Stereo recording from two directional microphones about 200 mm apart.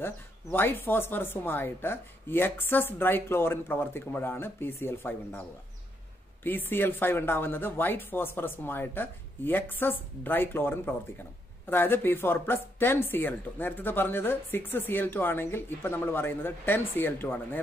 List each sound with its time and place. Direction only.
0.0 s speech: 10° left (ahead or behind)
6.4 s speech: 10° left (ahead or behind)